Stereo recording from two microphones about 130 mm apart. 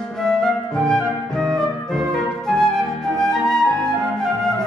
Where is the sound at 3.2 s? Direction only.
5° left (ahead or behind).